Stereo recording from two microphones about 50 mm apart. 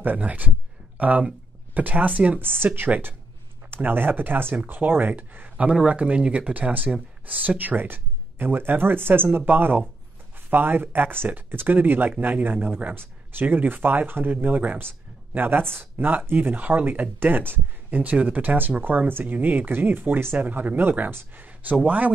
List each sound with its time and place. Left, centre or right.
0.0 s speech: right
2.6 s speech: right
12.5 s speech: right
12.9 s speech: right
14.3 s speech: right
15.3 s speech: right
21.4 s a sound: right
21.8 s speech: right